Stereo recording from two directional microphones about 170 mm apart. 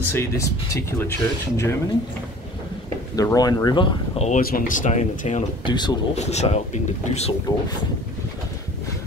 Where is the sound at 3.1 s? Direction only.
20° left (ahead or behind).